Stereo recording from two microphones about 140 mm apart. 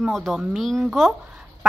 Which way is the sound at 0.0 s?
Centre (ahead or behind).